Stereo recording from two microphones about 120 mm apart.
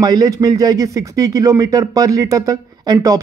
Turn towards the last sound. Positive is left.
turn(degrees=-30)  # may be behind; listen again after turning